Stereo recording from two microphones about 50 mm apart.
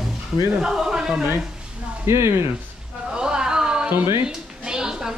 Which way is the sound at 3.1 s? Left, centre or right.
Centre.